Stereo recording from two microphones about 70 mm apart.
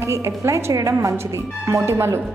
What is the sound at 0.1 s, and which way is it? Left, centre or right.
A woman's voice, right.